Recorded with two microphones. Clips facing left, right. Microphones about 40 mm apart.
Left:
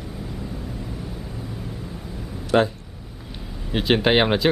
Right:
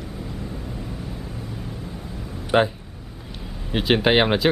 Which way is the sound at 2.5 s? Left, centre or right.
Right.